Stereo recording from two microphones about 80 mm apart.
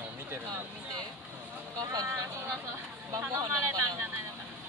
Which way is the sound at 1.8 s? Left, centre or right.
Right.